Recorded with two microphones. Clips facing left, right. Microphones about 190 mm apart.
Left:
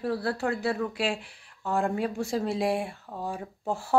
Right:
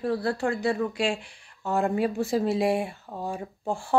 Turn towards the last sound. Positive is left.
turn(degrees=5)  # may be behind; listen again after turning